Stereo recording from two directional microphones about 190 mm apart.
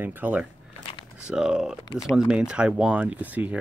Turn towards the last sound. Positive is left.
turn(degrees=-10)  # may be behind; listen again after turning